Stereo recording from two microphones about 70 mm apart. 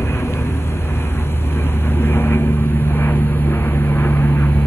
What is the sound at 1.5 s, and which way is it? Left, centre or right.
Vehicle, left.